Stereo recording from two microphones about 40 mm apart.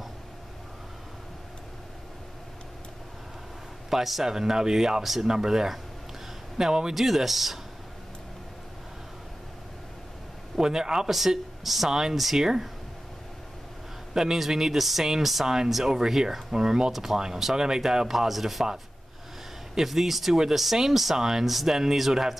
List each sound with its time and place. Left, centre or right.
3.9 s speech: centre
6.9 s speech: centre
10.6 s speech: centre
11.1 s speech: centre
14.1 s speech: centre